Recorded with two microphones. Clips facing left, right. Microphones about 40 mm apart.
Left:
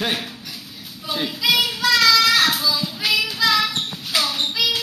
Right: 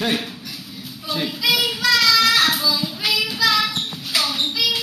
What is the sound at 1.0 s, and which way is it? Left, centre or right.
Child singing, centre.